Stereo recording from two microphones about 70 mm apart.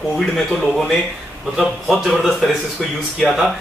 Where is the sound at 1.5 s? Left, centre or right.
Centre.